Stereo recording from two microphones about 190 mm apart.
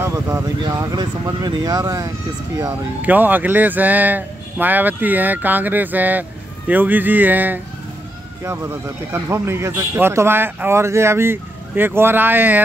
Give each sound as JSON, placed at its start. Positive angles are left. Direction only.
{"t": 0.0, "sound": "a man's voice", "side_deg": -15}